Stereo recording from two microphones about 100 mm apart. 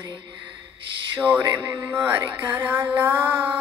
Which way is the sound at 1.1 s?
15° right (ahead or behind).